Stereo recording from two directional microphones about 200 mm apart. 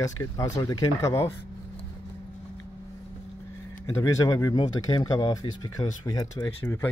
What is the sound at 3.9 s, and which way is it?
Speech, 15° left (ahead or behind).